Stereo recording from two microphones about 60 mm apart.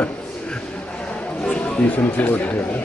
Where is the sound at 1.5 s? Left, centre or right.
Left.